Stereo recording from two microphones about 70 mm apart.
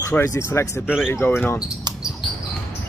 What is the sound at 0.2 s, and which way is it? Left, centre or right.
Speech, left.